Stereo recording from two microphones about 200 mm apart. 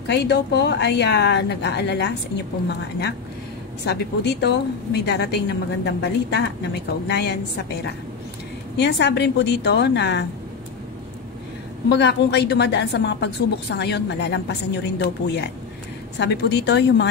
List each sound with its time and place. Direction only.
0.0 s a woman's voice: 60° left (ahead or behind)
3.8 s a woman's voice: 55° left (ahead or behind)
8.7 s a woman's voice: 60° left (ahead or behind)
11.9 s a woman's voice: 55° left (ahead or behind)